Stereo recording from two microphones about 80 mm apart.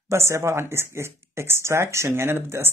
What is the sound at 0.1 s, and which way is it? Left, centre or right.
Speech, right.